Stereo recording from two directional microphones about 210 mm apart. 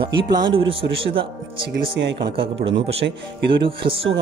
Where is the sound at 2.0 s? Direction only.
55° right (ahead or behind).